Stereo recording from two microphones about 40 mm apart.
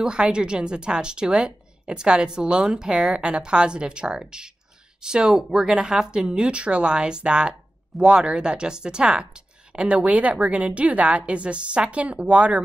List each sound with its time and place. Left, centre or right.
0.0 s speech: right